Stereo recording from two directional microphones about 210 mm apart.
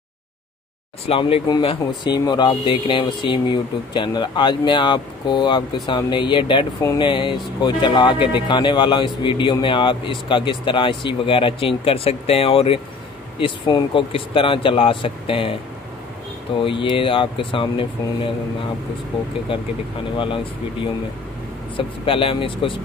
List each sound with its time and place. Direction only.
1.0 s speech: 25° left (ahead or behind)
16.6 s speech: 25° left (ahead or behind)
21.7 s speech: 25° left (ahead or behind)